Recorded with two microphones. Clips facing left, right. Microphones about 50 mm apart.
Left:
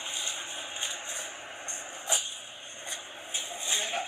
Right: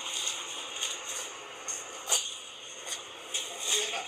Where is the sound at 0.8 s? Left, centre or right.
Centre.